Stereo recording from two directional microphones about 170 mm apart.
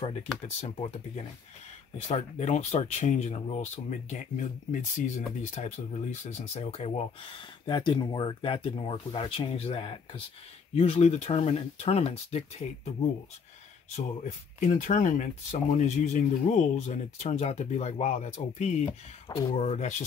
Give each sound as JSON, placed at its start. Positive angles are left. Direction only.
{"t": 0.6, "sound": "speech", "side_deg": 35}
{"t": 14.7, "sound": "speech", "side_deg": 45}
{"t": 19.2, "sound": "speech", "side_deg": 20}
{"t": 19.5, "sound": "speech", "side_deg": 40}